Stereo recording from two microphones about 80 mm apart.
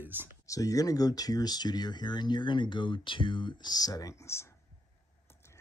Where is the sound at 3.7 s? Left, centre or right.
Left.